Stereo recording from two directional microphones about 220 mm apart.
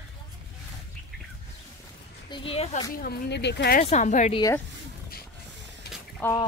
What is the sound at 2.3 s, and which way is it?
Speech, 25° left (ahead or behind).